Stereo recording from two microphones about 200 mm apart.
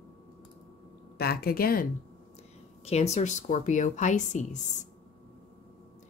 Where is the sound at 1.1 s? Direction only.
50° left (ahead or behind).